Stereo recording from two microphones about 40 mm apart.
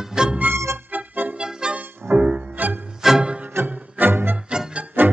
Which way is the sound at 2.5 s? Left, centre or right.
Right.